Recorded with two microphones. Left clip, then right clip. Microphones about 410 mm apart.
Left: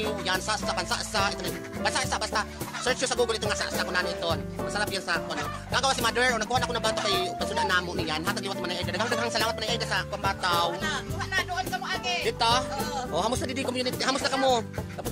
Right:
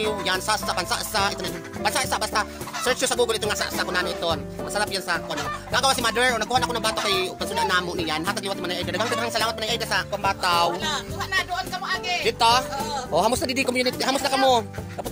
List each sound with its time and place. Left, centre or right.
0.0 s music: left
10.8 s speech: left
12.1 s music: left
13.1 s speech: left